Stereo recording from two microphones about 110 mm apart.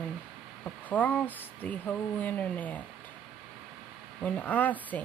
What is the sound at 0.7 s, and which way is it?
Speech, 15° left (ahead or behind).